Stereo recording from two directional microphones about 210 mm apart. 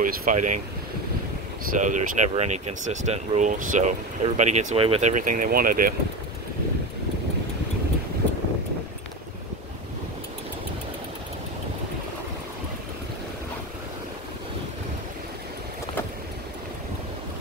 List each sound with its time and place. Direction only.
0.0 s speech: 40° right (ahead or behind)
1.8 s speech: 35° right (ahead or behind)